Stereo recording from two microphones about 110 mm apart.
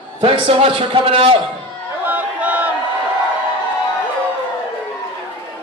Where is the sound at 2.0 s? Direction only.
15° right (ahead or behind).